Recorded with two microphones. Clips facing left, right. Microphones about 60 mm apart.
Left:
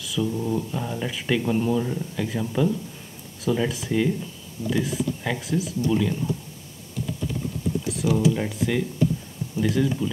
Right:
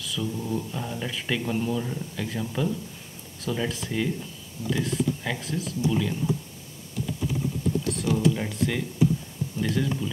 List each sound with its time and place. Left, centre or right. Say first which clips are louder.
0.0 s mantra: left 5 dB; centre
0.4 s speech: left 4 dB; centre
7.9 s speech: left 4 dB; centre